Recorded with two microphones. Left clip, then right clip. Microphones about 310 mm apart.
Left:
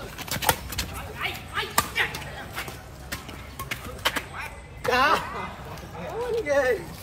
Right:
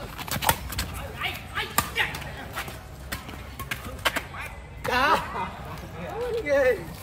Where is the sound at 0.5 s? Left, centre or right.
Centre.